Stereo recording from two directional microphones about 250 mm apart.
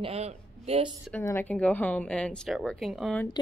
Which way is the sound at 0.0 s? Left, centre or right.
Right.